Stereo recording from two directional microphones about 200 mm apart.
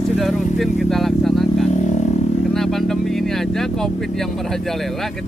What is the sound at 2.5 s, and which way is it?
Speech, centre (ahead or behind).